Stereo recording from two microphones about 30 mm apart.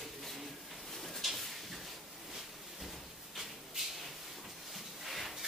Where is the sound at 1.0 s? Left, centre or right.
Centre.